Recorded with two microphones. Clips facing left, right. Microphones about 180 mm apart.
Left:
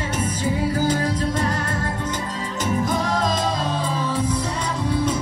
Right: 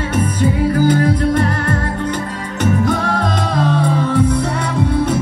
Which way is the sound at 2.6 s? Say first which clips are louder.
Right 6 dB; 65° right (ahead or behind).